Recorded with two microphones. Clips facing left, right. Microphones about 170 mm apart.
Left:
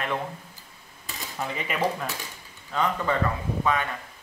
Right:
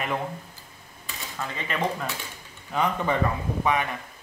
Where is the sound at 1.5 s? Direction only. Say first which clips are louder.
Left 1 dB; 10° left (ahead or behind).